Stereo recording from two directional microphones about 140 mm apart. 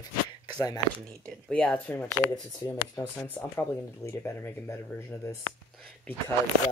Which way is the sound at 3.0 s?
25° left (ahead or behind).